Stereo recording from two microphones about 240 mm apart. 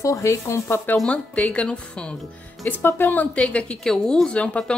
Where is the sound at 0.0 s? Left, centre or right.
Centre.